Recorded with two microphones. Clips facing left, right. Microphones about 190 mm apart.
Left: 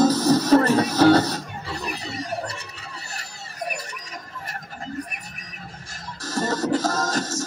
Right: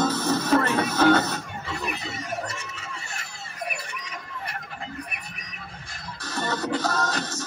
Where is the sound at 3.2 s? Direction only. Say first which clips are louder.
Left 2 dB; 40° left (ahead or behind).